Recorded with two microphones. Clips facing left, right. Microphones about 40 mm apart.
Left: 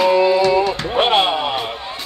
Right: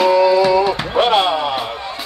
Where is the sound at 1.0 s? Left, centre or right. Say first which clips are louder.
Right 1 dB; left.